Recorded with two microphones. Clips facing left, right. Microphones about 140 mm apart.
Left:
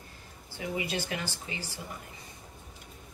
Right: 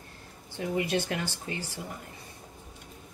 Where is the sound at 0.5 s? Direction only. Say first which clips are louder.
Right 5 dB; 60° right (ahead or behind).